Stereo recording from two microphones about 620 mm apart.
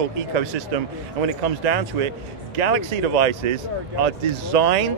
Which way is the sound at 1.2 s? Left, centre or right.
Right.